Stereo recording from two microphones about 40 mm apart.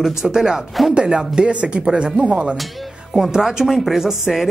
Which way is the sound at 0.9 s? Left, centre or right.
Right.